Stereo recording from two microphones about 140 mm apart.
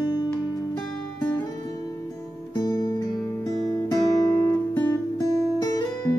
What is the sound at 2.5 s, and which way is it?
Music, 25° left (ahead or behind).